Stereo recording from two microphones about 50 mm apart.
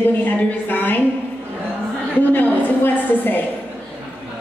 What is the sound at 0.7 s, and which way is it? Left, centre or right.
Speech, left.